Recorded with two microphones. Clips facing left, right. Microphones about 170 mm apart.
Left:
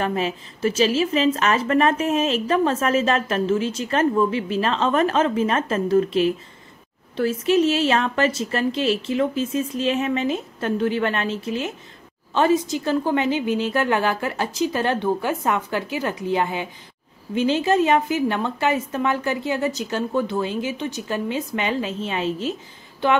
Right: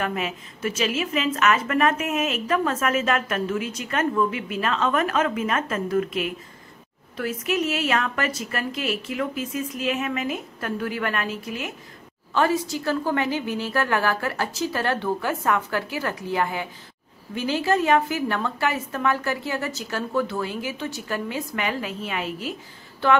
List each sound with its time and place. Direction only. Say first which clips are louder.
0.0 s a woman's voice: left 4 dB; 30° left (ahead or behind)